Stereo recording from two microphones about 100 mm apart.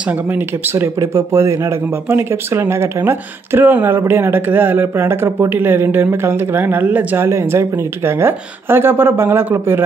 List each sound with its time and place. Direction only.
0.0 s speech: 15° right (ahead or behind)
7.2 s speech: 30° right (ahead or behind)